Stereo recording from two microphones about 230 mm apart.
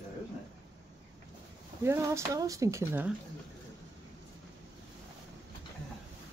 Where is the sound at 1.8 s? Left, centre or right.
Centre.